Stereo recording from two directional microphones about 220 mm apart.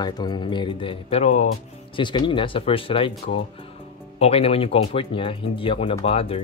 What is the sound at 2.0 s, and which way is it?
Speech, 20° left (ahead or behind).